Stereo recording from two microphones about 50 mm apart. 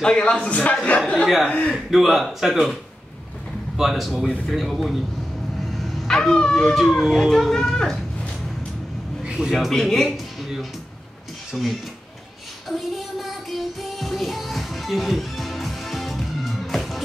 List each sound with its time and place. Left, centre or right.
0.0 s a man's voice: centre
1.2 s speech: centre
5.6 s a sound: centre
6.0 s speech: centre
6.7 s speech: centre
9.2 s a sound: centre
9.5 s speech: centre
9.8 s speech: centre
10.0 s a sound: centre
11.5 s speech: centre
12.6 s music: centre